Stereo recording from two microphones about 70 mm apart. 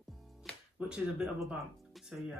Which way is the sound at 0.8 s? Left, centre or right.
Centre.